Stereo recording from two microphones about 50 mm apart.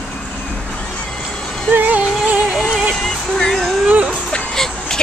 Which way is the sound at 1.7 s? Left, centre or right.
Right.